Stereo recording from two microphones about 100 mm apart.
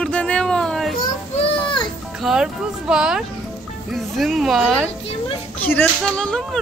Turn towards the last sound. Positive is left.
turn(degrees=10)  # may be behind; listen again after turning